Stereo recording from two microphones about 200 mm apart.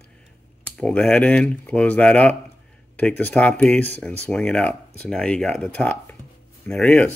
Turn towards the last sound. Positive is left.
turn(degrees=5)  # may be behind; listen again after turning